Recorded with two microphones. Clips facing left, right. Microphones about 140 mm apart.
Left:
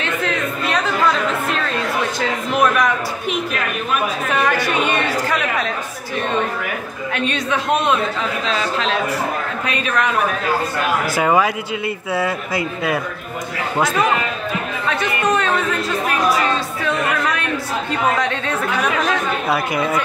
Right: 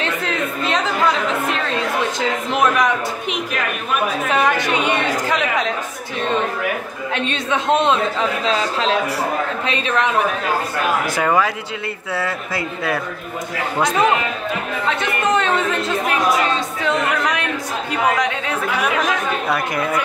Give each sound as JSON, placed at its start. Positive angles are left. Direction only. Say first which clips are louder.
{"t": 2.1, "sound": "a woman's voice", "louder": "even", "side_deg": -20}
{"t": 4.5, "sound": "speech", "louder": "even", "side_deg": -20}
{"t": 7.1, "sound": "a woman's voice", "louder": "left 1 dB", "side_deg": -25}
{"t": 11.1, "sound": "speech", "louder": "left 4 dB", "side_deg": 15}
{"t": 15.0, "sound": "a woman's voice", "louder": "left 1 dB", "side_deg": -25}
{"t": 16.8, "sound": "speech", "louder": "right 1 dB", "side_deg": -15}
{"t": 19.5, "sound": "speech", "louder": "left 3 dB", "side_deg": 10}